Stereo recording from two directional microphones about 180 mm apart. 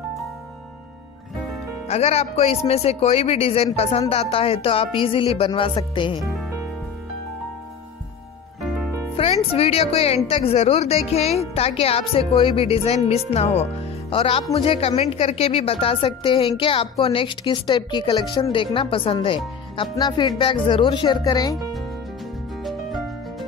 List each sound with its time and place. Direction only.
1.9 s speech: 35° left (ahead or behind)
9.1 s a woman's voice: 30° left (ahead or behind)
22.7 s music: centre (ahead or behind)